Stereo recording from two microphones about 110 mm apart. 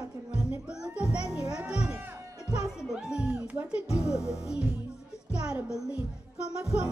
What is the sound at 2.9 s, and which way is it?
Music, 10° right (ahead or behind).